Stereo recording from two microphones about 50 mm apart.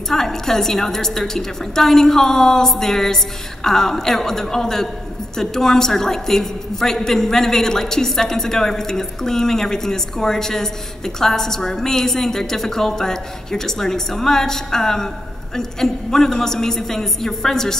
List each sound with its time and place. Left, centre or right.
0.1 s a woman's voice: centre